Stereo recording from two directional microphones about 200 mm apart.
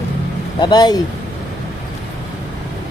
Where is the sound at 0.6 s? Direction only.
20° left (ahead or behind).